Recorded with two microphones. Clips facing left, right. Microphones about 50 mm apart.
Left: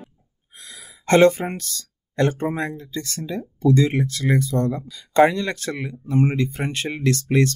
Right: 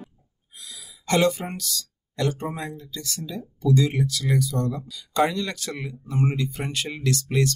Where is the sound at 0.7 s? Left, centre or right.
Left.